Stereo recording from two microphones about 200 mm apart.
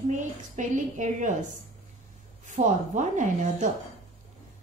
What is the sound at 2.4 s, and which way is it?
A woman's voice, 40° right (ahead or behind).